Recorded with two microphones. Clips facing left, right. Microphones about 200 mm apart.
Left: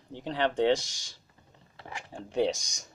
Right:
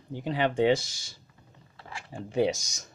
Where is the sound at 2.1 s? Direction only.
5° right (ahead or behind).